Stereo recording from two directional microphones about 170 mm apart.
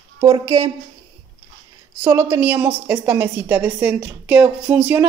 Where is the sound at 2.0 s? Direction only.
15° right (ahead or behind).